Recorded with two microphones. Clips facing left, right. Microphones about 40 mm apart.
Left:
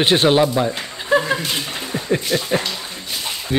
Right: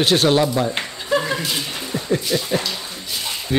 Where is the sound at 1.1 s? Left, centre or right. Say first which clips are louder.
Left 3 dB; left.